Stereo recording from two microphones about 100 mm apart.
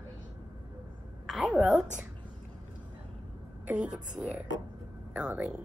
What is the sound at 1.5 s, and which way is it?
Speech, 15° right (ahead or behind).